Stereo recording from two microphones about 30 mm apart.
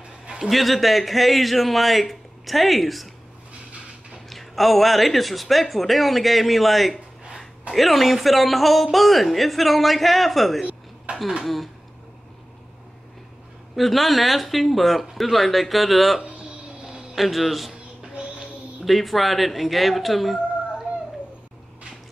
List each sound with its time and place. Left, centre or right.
0.5 s speech: centre
4.3 s speech: centre
11.1 s a sound: right
11.4 s speech: centre
13.7 s speech: centre
18.9 s speech: centre